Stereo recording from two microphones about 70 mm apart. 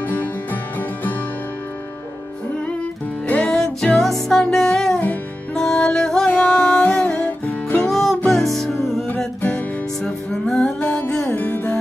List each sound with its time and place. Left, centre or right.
0.0 s music: left
3.3 s music: centre
5.0 s music: left
5.6 s music: centre
7.9 s music: centre
9.4 s music: left
10.0 s music: centre
11.3 s music: left